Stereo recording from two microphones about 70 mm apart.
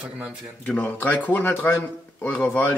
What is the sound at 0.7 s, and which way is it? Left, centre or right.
Speech, left.